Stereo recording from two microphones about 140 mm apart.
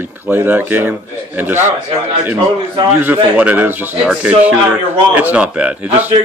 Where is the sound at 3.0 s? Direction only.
10° right (ahead or behind).